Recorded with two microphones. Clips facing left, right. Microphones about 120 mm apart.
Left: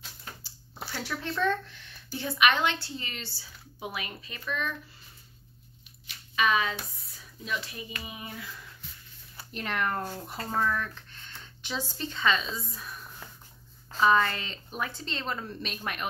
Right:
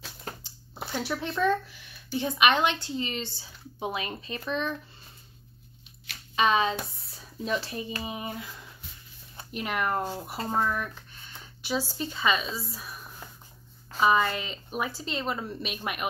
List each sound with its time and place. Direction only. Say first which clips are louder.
0.8 s speech: right 4 dB; 15° right (ahead or behind)
1.3 s speech: right 2 dB; 5° right (ahead or behind); by 4.7 s 25° right (ahead or behind)
6.3 s speech: right 3 dB; 25° right (ahead or behind)
9.5 s a woman's voice: right 2 dB; 10° right (ahead or behind)